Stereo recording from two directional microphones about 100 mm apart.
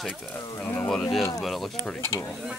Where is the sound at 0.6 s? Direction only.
15° left (ahead or behind).